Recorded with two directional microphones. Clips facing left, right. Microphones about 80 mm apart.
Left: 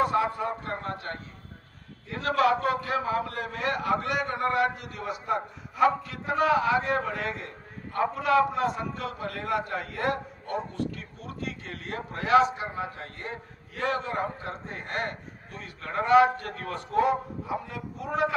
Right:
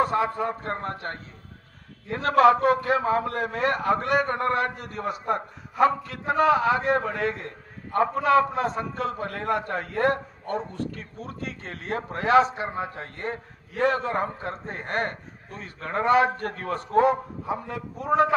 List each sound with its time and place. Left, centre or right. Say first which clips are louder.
0.0 s a man's voice: right 2 dB; right